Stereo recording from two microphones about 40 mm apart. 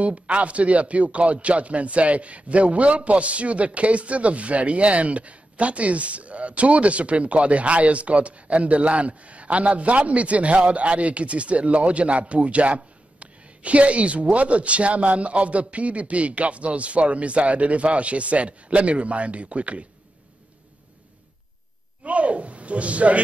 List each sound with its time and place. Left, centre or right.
0.0 s a man's voice: right
22.0 s speech: right